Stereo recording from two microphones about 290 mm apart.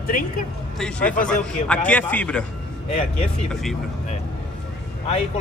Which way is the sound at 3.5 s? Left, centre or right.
Centre.